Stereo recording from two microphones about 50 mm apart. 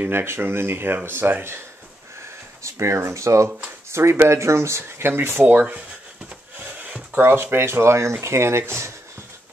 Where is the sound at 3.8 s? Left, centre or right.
Right.